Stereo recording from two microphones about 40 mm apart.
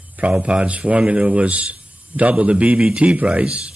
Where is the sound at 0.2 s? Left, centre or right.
Right.